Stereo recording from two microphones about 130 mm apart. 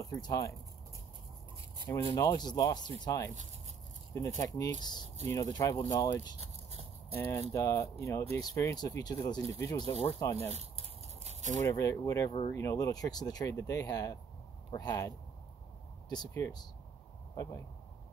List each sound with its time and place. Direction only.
0.0 s speech: 25° left (ahead or behind)
2.0 s speech: 30° left (ahead or behind)
4.1 s speech: 25° left (ahead or behind)
10.3 s speech: 55° right (ahead or behind)
11.6 s speech: 25° left (ahead or behind)